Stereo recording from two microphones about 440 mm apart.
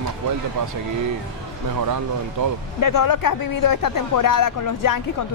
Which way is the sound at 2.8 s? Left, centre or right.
Left.